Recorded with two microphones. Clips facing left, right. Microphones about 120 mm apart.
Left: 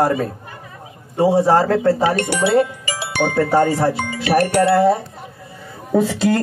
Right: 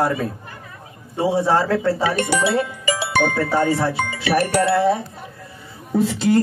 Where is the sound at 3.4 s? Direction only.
40° left (ahead or behind).